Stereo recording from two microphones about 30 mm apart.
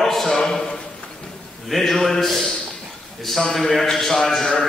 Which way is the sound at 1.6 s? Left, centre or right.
Centre.